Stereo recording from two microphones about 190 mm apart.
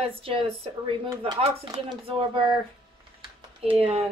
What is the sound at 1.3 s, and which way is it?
Speech, 25° right (ahead or behind).